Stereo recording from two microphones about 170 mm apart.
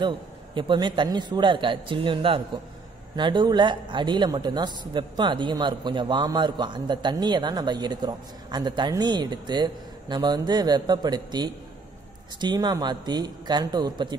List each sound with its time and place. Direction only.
0.6 s speech: 30° right (ahead or behind)